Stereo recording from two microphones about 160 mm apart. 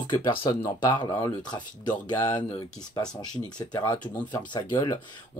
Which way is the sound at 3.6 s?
25° left (ahead or behind).